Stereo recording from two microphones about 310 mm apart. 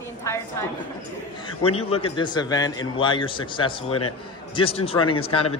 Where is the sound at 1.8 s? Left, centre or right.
Centre.